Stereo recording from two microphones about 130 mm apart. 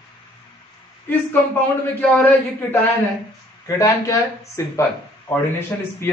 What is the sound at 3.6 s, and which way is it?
A man's voice, 25° left (ahead or behind).